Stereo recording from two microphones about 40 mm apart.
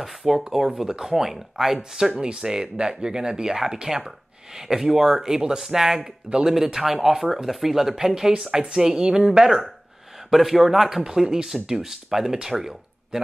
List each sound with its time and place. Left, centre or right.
0.3 s speech: centre